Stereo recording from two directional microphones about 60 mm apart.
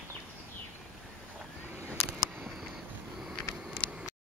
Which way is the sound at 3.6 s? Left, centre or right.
Centre.